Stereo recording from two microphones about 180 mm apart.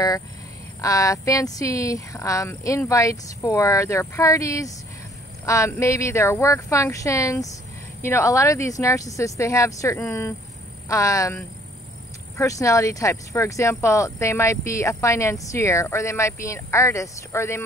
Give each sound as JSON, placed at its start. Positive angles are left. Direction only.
{"t": 0.7, "sound": "speech", "side_deg": 20}